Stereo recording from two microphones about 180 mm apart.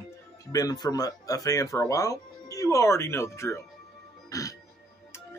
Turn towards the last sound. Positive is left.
turn(degrees=20)  # may be behind; listen again after turning